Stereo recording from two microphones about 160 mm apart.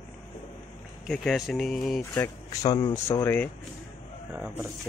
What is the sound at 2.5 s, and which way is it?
Speech, 20° left (ahead or behind).